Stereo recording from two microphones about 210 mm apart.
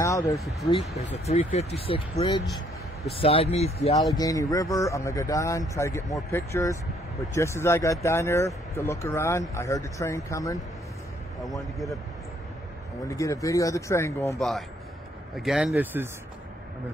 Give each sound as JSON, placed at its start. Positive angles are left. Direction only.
{"t": 0.0, "sound": "speech", "side_deg": 15}
{"t": 0.4, "sound": "speech", "side_deg": 0}
{"t": 1.1, "sound": "speech", "side_deg": 30}
{"t": 4.2, "sound": "speech", "side_deg": 15}
{"t": 13.1, "sound": "speech", "side_deg": 15}
{"t": 15.3, "sound": "speech", "side_deg": 0}